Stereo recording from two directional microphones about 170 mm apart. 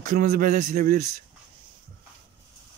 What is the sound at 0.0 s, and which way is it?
Speech, 55° right (ahead or behind).